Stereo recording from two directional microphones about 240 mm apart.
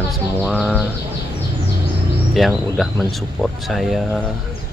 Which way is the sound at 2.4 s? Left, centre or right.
Centre.